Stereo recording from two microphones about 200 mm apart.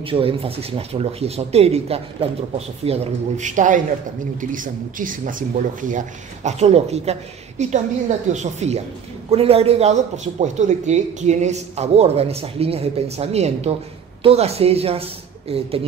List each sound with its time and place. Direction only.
0.0 s speech: 25° right (ahead or behind)